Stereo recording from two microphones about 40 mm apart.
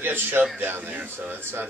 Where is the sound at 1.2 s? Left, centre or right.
Right.